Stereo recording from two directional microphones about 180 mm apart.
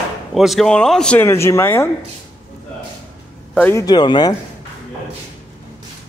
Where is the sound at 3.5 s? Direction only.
10° left (ahead or behind).